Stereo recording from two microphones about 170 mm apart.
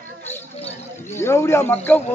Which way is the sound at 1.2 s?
15° left (ahead or behind).